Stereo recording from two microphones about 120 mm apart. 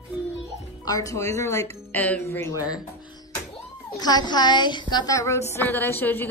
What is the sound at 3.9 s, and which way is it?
A woman's voice, 35° left (ahead or behind).